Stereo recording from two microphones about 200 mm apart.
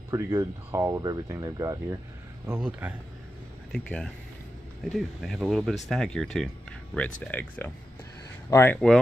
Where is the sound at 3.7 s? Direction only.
5° left (ahead or behind).